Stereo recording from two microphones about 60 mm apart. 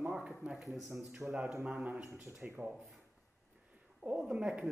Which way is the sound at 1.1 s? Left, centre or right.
Right.